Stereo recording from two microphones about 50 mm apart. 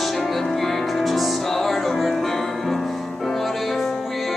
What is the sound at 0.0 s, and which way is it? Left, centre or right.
Music, centre.